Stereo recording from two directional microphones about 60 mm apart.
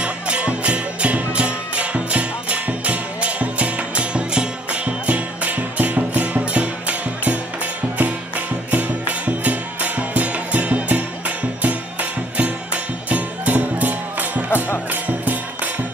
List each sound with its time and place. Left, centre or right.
0.0 s music: centre
8.6 s music: right